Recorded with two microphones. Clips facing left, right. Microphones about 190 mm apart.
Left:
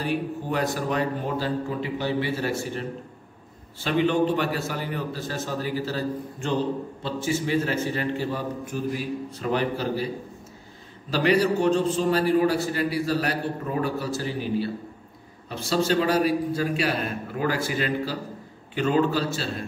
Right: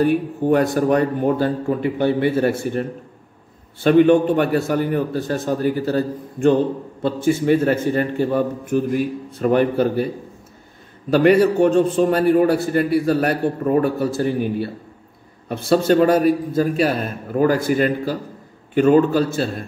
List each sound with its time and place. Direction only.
0.0 s a man's voice: 50° right (ahead or behind)
11.1 s a man's voice: 55° right (ahead or behind)